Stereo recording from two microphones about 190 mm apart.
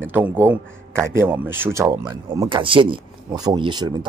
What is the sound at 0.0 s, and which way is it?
A man's voice, 10° right (ahead or behind).